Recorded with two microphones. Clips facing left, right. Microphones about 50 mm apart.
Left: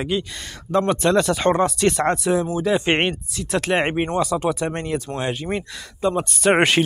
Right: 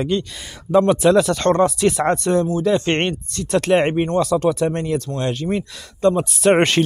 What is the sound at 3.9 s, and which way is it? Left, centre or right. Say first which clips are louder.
Speech: right 3 dB; left.